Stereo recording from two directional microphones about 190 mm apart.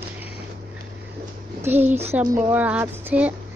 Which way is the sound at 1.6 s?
10° right (ahead or behind).